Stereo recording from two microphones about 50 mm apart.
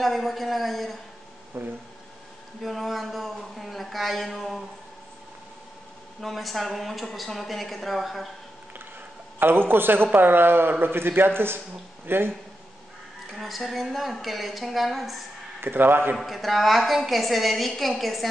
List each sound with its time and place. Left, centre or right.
0.0 s a woman's voice: centre
1.5 s speech: right
2.6 s a woman's voice: centre
6.2 s a woman's voice: centre
9.4 s a man's voice: right
13.4 s a woman's voice: centre
15.6 s a man's voice: right
16.2 s a woman's voice: centre